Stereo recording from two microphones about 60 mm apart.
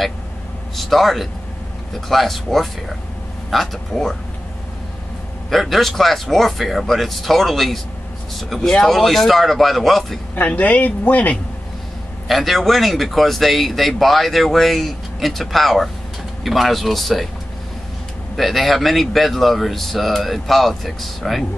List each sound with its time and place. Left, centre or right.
0.7 s speech: centre
5.5 s speech: centre
10.3 s speech: left
12.3 s speech: centre
18.3 s speech: centre